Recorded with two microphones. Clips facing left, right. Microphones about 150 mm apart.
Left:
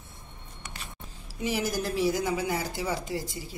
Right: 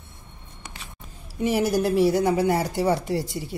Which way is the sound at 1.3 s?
60° right (ahead or behind).